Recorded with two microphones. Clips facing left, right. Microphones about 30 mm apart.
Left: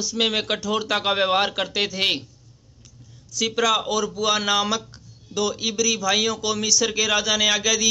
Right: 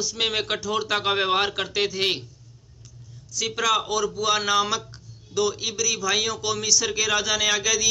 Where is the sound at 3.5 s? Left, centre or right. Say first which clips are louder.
Left 2 dB; centre.